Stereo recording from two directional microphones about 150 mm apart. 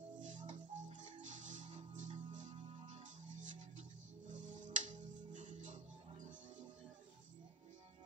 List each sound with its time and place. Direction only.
0.2 s music: 55° right (ahead or behind)